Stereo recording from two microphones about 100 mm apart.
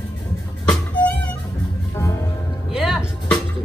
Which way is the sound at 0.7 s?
15° left (ahead or behind).